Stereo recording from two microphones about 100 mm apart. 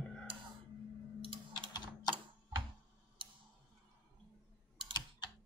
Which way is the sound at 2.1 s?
40° left (ahead or behind).